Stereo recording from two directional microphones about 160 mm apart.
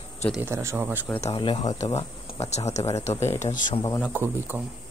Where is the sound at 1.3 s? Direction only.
30° left (ahead or behind).